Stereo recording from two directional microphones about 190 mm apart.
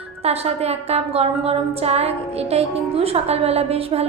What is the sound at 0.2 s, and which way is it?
A woman's voice, 35° right (ahead or behind).